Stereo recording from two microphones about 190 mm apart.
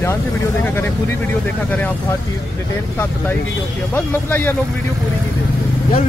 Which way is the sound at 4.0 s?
10° left (ahead or behind).